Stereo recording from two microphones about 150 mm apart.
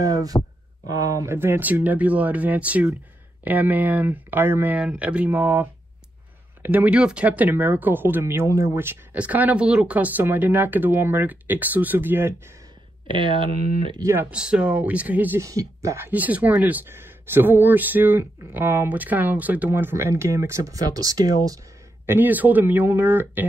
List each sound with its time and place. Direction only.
0.0 s speech: 25° right (ahead or behind)
13.1 s speech: 35° right (ahead or behind)
14.3 s speech: 5° right (ahead or behind); by 21.4 s 25° right (ahead or behind)
22.0 s speech: 15° right (ahead or behind)